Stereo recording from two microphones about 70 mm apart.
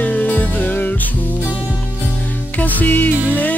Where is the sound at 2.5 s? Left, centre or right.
Left.